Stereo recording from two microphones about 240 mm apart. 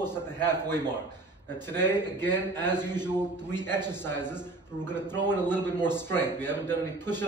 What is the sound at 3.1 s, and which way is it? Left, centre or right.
A man's voice, centre.